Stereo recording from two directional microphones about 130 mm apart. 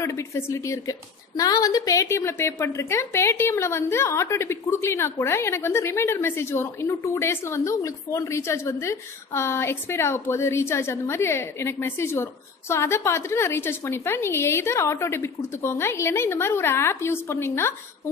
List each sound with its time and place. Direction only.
0.0 s a woman's voice: 20° left (ahead or behind)